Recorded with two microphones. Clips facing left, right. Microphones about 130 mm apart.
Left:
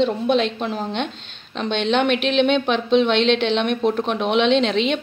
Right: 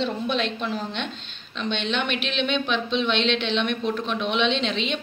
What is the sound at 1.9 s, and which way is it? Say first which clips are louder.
A woman's voice: left 9 dB; 85° left.